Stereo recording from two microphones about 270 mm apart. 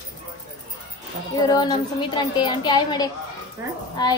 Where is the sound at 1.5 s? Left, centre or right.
Centre.